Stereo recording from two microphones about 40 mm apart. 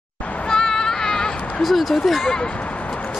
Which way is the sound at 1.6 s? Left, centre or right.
Centre.